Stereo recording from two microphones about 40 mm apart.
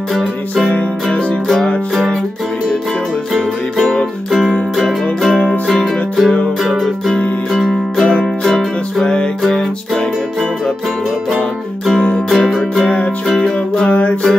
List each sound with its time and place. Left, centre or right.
4.3 s music: centre
8.0 s music: centre
12.3 s music: centre
12.8 s music: left